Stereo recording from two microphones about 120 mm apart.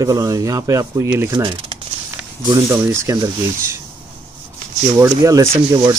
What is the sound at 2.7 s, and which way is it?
Speech, 20° right (ahead or behind).